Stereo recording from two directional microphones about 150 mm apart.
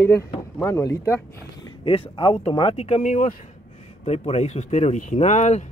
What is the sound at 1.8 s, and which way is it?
Speech, 35° left (ahead or behind).